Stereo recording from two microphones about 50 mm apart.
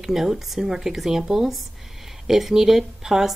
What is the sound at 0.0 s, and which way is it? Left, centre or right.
Speech, centre.